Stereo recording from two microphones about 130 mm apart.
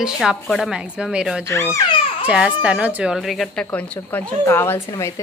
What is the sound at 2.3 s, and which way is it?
Speech, 10° right (ahead or behind).